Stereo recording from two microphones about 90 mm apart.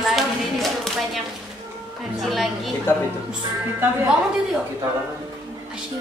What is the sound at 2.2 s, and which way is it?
Speech, centre (ahead or behind).